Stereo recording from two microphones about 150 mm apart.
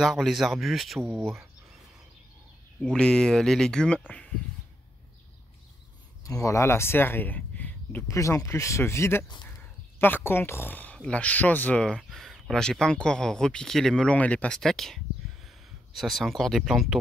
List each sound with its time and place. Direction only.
0.0 s speech: centre (ahead or behind)
2.8 s speech: 5° left (ahead or behind)
6.2 s speech: 20° left (ahead or behind); by 16.9 s centre (ahead or behind)